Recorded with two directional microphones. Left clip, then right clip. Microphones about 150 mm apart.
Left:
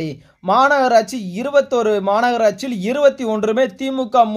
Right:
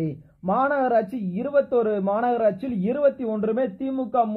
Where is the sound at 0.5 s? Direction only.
30° left (ahead or behind).